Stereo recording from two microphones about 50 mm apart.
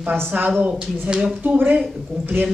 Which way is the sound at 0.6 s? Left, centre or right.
Centre.